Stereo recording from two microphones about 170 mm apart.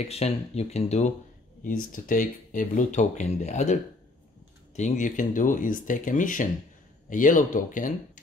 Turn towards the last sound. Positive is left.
turn(degrees=50)  # may be behind; listen again after turning